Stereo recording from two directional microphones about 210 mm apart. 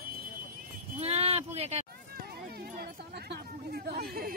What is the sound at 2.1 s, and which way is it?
Speech, 50° right (ahead or behind).